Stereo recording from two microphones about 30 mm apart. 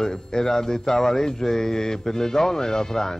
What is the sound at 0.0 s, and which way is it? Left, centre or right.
Speech, centre.